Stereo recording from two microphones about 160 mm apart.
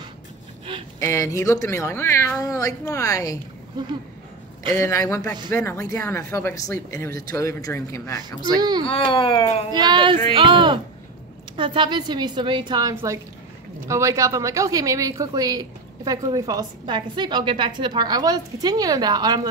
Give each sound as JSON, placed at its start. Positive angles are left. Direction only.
{"t": 0.9, "sound": "speech", "side_deg": 20}
{"t": 4.7, "sound": "speech", "side_deg": 20}
{"t": 7.1, "sound": "speech", "side_deg": -65}
{"t": 7.3, "sound": "speech", "side_deg": 20}
{"t": 8.5, "sound": "a woman's voice", "side_deg": -25}
{"t": 8.8, "sound": "speech", "side_deg": 35}
{"t": 9.7, "sound": "a woman's voice", "side_deg": -25}